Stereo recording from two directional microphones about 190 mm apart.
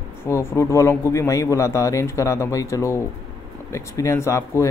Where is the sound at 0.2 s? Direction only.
15° left (ahead or behind).